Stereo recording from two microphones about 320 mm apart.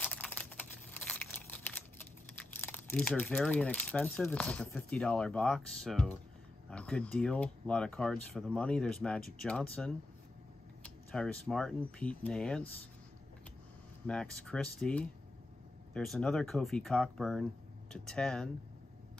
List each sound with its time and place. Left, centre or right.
0.0 s crumpling: centre
2.3 s speech: centre
14.0 s speech: centre